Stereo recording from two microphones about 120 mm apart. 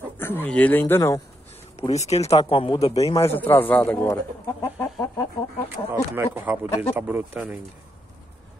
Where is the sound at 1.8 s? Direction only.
65° left (ahead or behind).